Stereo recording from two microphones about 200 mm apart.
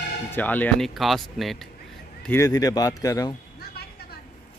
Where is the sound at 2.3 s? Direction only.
15° left (ahead or behind).